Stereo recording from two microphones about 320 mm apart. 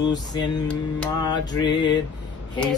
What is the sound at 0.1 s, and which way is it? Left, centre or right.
Mantra, centre.